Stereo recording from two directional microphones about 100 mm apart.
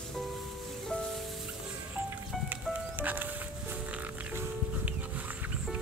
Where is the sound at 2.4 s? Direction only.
20° right (ahead or behind).